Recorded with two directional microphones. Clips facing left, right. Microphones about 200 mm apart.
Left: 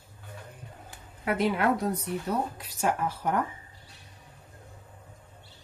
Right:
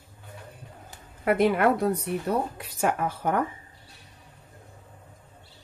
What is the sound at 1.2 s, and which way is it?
Speech, 50° right (ahead or behind).